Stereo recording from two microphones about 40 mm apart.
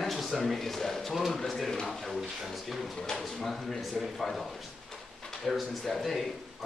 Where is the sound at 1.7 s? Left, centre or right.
Centre.